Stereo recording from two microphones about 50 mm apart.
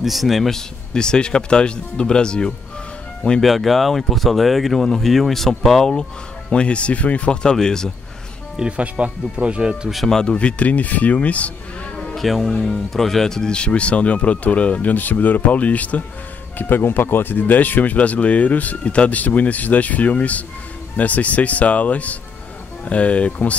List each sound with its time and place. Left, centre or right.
0.0 s speech: centre
3.3 s speech: centre
6.5 s speech: left
7.4 s speech: centre
8.5 s speech: right
10.0 s speech: centre
10.3 s speech: left
12.2 s speech: centre; by 16.0 s left
16.5 s speech: left